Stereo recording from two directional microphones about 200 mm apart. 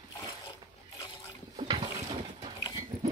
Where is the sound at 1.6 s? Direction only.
25° right (ahead or behind).